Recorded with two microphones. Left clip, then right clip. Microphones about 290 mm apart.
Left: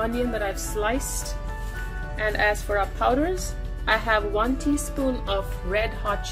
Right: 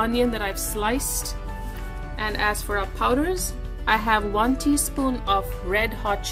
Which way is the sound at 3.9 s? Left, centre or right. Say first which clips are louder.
Right 1 dB; right.